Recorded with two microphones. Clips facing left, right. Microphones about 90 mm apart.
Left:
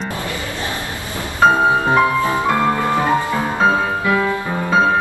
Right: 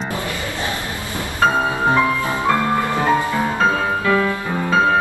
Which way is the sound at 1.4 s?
20° left (ahead or behind).